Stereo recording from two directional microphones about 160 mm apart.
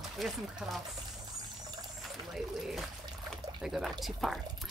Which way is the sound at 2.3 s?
Centre (ahead or behind).